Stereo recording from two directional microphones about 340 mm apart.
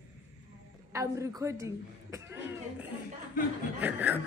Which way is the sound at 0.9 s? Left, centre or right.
Centre.